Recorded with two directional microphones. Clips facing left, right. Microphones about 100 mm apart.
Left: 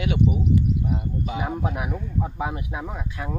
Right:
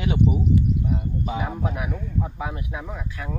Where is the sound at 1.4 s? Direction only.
20° left (ahead or behind).